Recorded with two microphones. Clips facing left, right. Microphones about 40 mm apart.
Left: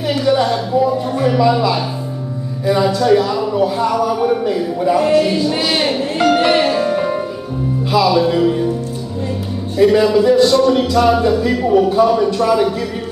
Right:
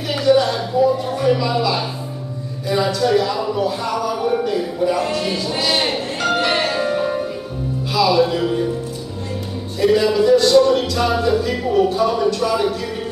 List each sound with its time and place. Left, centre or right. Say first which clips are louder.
0.2 s speech: right 1 dB; centre
2.9 s music: left 4 dB; centre
3.6 s speech: left 5 dB; centre
5.2 s music: left 5 dB; centre
10.0 s music: left 3 dB; centre
11.9 s speech: left 4 dB; centre